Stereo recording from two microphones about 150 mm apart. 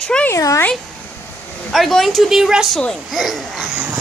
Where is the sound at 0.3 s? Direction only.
20° left (ahead or behind).